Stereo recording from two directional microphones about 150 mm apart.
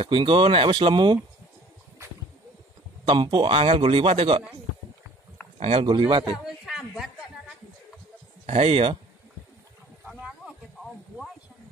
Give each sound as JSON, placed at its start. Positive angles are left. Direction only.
{"t": 0.0, "sound": "speech", "side_deg": -35}
{"t": 3.1, "sound": "speech", "side_deg": -35}
{"t": 5.6, "sound": "speech", "side_deg": -40}
{"t": 6.3, "sound": "a sound", "side_deg": -5}
{"t": 8.5, "sound": "speech", "side_deg": -40}
{"t": 10.1, "sound": "a sound", "side_deg": -10}